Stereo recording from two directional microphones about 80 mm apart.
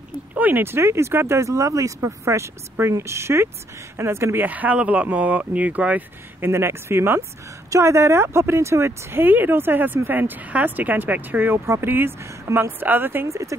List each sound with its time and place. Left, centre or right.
0.3 s speech: right
4.5 s speech: centre
6.5 s speech: right
13.3 s speech: right